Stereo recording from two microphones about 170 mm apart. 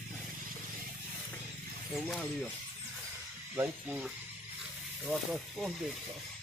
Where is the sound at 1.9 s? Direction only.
Centre (ahead or behind).